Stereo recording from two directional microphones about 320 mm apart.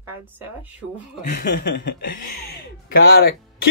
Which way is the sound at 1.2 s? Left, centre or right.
Left.